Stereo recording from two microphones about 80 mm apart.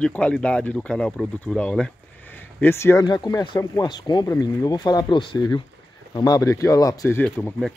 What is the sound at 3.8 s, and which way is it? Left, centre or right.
Speech, left.